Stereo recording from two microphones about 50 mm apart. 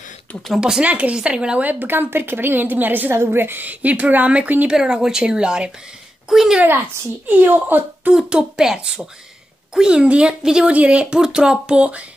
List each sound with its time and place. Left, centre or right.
0.6 s speech: centre
0.8 s speech: right
1.1 s speech: centre
1.6 s a woman's voice: right
4.6 s speech: centre
7.2 s a woman's voice: right
8.3 s speech: centre